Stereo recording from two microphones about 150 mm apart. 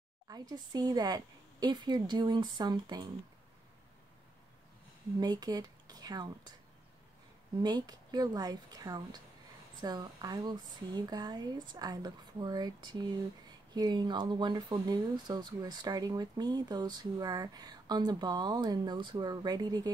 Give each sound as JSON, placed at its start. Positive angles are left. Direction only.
{"t": 0.3, "sound": "speech", "side_deg": -25}
{"t": 5.2, "sound": "speech", "side_deg": -25}
{"t": 7.6, "sound": "speech", "side_deg": -25}